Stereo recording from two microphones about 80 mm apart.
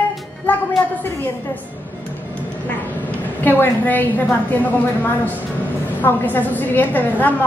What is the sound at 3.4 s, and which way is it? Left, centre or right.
A woman's voice, left.